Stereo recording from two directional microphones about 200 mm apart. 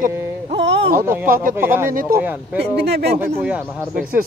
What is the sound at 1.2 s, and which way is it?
Speech, 45° right (ahead or behind).